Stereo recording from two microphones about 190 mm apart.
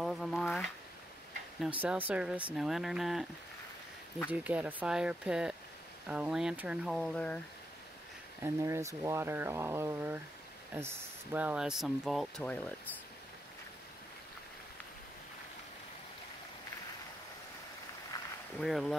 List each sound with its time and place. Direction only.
0.0 s speech: centre (ahead or behind)
1.8 s speech: 10° right (ahead or behind)
4.3 s speech: 10° right (ahead or behind)
8.5 s speech: 15° right (ahead or behind)
11.3 s speech: 5° right (ahead or behind)
18.1 s a sound: 20° left (ahead or behind)
18.6 s speech: centre (ahead or behind)